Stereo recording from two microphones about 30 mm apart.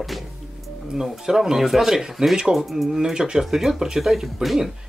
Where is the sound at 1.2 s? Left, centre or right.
Centre.